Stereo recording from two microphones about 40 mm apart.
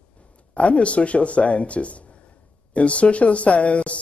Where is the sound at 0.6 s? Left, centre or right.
Left.